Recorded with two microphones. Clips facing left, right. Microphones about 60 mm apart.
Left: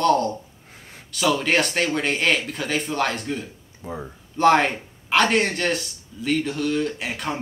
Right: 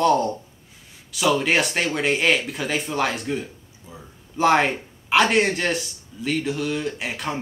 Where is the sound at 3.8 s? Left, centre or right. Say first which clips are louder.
Left 11 dB; left.